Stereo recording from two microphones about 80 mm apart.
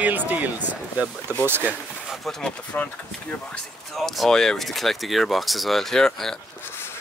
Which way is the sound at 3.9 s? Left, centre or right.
Centre.